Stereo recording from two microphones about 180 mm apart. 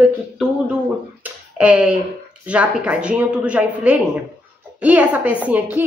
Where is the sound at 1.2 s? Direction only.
5° right (ahead or behind).